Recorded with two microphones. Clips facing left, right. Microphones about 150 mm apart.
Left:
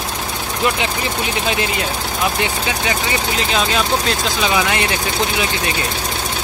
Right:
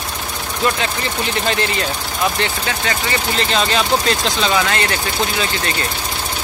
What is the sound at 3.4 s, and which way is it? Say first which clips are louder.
Speech: right 1 dB; 5° left (ahead or behind).